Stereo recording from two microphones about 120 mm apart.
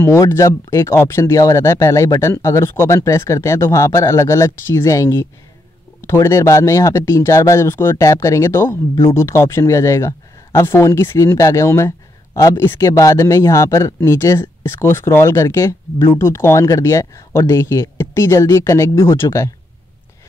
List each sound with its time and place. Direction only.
0.0 s speech: 20° left (ahead or behind)